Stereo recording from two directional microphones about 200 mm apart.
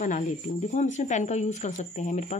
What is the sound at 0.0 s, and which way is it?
Speech, 40° left (ahead or behind).